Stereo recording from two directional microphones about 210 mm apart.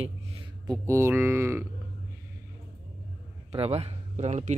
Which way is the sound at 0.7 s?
15° right (ahead or behind).